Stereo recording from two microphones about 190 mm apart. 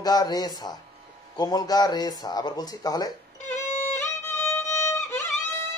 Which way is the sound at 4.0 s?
15° left (ahead or behind).